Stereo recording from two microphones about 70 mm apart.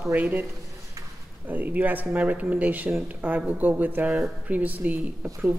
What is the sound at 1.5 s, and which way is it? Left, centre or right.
Speech, right.